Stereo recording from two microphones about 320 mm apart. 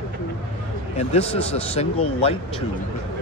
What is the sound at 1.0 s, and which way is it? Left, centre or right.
A man's voice, centre.